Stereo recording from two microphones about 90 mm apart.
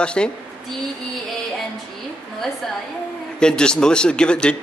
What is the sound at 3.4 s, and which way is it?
Speech, 10° left (ahead or behind).